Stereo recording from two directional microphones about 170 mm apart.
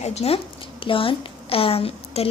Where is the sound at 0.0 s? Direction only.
40° left (ahead or behind).